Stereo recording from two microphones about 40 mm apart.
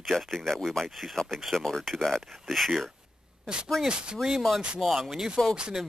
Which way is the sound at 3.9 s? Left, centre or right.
Right.